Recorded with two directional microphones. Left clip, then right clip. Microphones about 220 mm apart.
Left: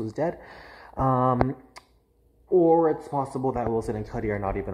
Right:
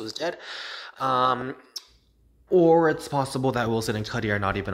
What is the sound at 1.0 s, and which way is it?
Speech, 35° right (ahead or behind).